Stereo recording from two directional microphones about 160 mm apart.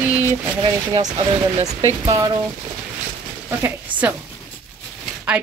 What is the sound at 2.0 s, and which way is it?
Speech, 20° right (ahead or behind).